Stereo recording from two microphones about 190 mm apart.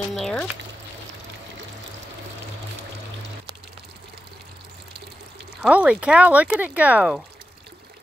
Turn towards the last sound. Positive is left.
turn(degrees=-5)  # may be behind; listen again after turning